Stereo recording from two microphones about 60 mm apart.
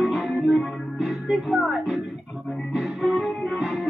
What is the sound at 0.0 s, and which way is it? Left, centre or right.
Music, centre.